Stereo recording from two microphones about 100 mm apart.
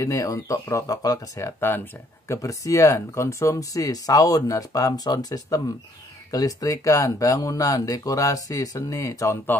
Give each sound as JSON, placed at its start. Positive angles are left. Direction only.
{"t": 0.0, "sound": "speech", "side_deg": 30}